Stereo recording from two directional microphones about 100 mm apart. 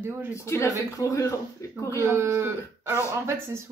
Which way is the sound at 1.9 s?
25° right (ahead or behind).